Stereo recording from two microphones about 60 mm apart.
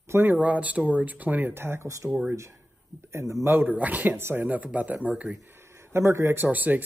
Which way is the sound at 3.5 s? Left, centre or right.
Right.